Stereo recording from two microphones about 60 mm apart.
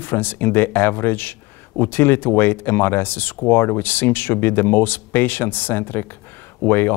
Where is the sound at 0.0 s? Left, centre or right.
Left.